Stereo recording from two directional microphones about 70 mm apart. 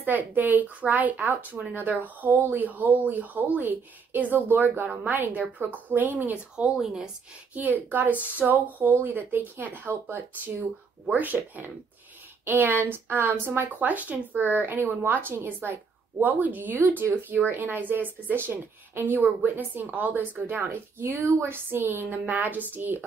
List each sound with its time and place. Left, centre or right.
0.0 s speech: right
6.8 s a woman's voice: centre
7.5 s speech: right